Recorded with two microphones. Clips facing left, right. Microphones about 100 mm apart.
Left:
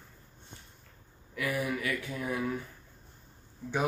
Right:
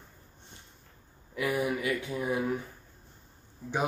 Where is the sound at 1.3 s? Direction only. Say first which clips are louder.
Right 3 dB; 20° right (ahead or behind).